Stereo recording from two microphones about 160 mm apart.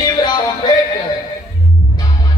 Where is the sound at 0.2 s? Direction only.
25° left (ahead or behind).